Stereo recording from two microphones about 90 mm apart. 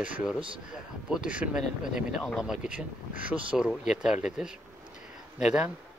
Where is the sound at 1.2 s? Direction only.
10° right (ahead or behind).